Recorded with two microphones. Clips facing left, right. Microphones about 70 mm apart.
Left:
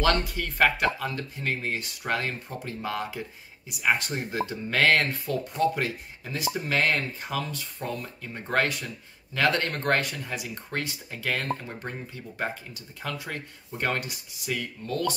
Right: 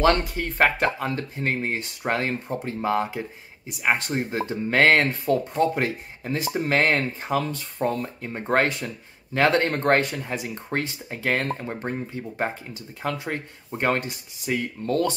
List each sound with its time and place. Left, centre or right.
0.0 s speech: right